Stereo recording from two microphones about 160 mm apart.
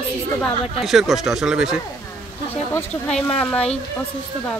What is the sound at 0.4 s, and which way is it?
Speech, centre (ahead or behind).